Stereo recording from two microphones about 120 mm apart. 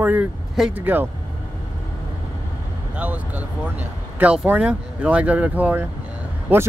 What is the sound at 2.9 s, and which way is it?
Speech, 10° right (ahead or behind).